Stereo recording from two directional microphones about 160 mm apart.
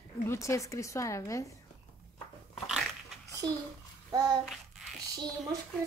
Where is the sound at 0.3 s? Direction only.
20° left (ahead or behind).